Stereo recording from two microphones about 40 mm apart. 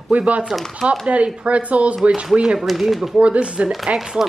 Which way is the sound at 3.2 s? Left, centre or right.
Right.